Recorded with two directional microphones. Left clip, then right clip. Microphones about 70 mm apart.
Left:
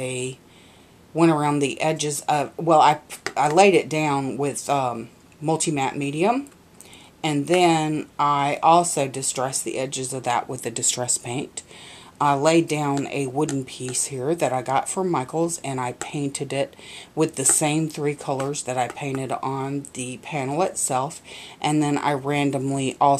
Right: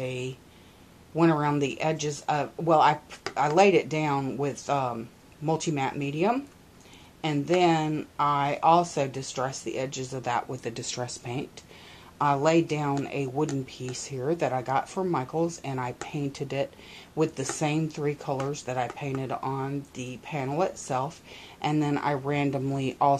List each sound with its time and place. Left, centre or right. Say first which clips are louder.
0.0 s speech: left 5 dB; left